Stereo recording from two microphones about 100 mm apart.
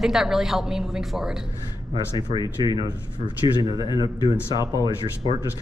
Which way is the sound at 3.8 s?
50° left (ahead or behind).